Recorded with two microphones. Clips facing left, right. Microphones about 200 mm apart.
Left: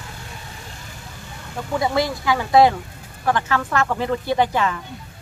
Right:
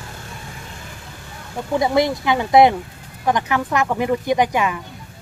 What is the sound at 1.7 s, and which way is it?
Speech, 20° right (ahead or behind).